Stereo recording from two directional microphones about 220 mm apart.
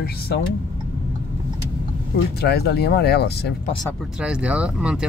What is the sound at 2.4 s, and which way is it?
Speech, 45° left (ahead or behind).